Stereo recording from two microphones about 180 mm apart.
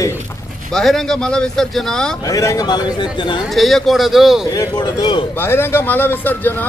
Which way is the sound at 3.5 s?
Centre (ahead or behind).